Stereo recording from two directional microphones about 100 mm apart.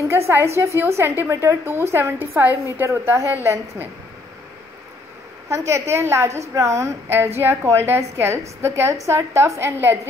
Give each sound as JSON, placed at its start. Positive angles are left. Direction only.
{"t": 0.3, "sound": "a woman's voice", "side_deg": -25}
{"t": 5.7, "sound": "a woman's voice", "side_deg": -30}